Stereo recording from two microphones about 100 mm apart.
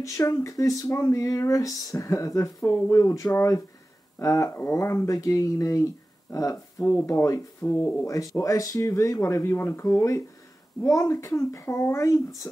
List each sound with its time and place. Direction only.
0.0 s speech: 30° left (ahead or behind)